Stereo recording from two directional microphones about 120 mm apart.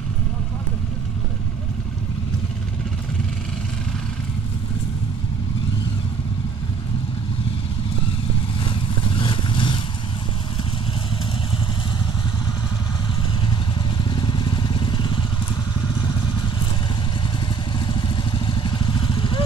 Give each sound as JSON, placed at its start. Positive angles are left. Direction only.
{"t": 8.6, "sound": "vehicle", "side_deg": 45}
{"t": 14.1, "sound": "vehicle", "side_deg": 40}
{"t": 17.7, "sound": "vehicle", "side_deg": 40}